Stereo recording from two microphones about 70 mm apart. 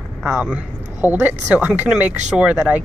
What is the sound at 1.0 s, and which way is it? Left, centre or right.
Speech, right.